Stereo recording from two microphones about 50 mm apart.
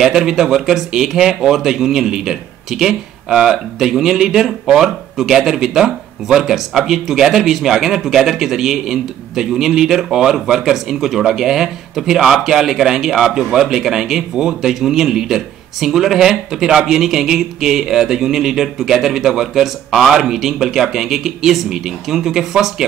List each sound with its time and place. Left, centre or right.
0.0 s speech: centre